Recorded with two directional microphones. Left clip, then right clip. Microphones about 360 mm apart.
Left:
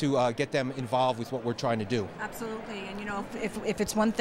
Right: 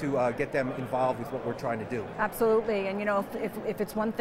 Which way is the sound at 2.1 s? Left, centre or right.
Centre.